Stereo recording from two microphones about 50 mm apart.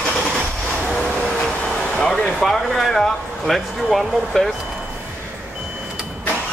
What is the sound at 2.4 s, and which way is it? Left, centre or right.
Speech, centre.